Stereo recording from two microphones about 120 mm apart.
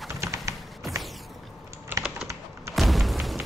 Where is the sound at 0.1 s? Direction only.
25° right (ahead or behind).